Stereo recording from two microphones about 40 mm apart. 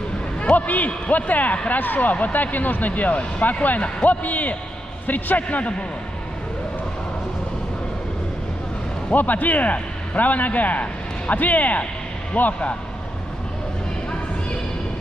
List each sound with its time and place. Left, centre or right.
0.4 s a man's voice: left
9.1 s a man's voice: left